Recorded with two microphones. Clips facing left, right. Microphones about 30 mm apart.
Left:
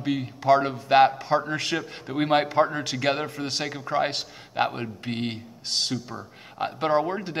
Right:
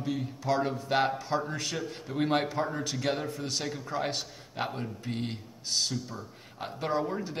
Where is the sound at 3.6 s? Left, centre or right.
Left.